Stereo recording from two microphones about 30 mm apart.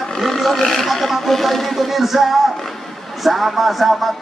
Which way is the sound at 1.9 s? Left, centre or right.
Centre.